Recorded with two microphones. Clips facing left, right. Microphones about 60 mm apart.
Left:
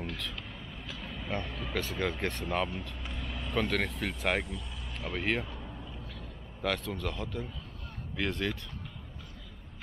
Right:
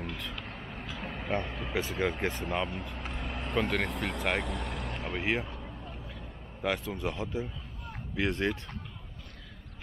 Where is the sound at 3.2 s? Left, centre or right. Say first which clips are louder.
Right 2 dB; right.